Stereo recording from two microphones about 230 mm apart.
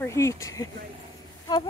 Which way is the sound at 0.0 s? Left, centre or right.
Centre.